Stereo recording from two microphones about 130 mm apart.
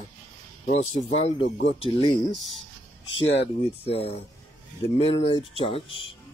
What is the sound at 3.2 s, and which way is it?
Speech, 50° left (ahead or behind).